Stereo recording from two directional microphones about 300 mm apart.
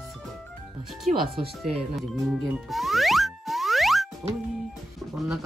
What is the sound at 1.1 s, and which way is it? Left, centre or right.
Speech, right.